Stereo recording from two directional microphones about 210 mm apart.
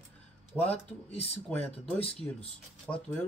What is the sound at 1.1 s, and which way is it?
Speech, 30° left (ahead or behind).